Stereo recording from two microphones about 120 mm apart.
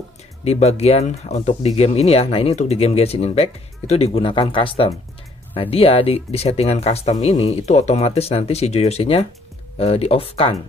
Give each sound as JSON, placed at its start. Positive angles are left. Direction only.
{"t": 0.5, "sound": "speech", "side_deg": 60}